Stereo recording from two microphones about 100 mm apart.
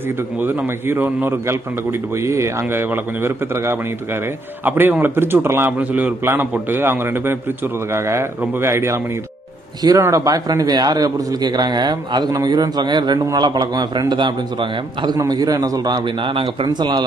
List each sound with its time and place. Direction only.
0.4 s a man's voice: 20° right (ahead or behind); by 15.1 s 50° right (ahead or behind)
15.1 s a man's voice: 40° right (ahead or behind)